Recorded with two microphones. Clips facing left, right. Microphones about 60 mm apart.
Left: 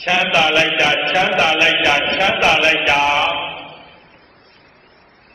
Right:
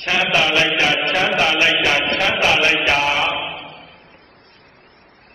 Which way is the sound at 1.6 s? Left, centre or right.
Left.